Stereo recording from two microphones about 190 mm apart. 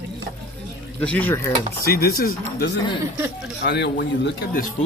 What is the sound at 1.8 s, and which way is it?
Speech, 50° left (ahead or behind).